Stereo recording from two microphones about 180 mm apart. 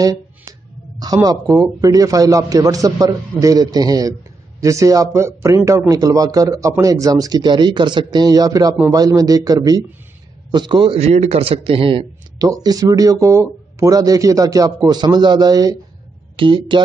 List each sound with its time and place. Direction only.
0.9 s a man's voice: 20° right (ahead or behind)